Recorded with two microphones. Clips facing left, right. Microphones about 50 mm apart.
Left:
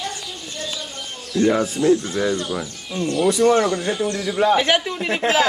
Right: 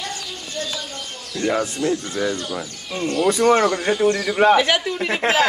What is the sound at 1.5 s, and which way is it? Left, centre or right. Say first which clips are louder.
Speech: left 2 dB; centre.